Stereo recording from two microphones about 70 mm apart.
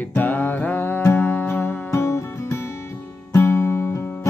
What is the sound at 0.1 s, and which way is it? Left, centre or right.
Music, left.